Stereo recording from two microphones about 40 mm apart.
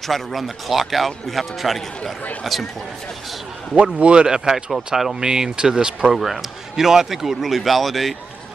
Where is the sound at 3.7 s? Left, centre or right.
Right.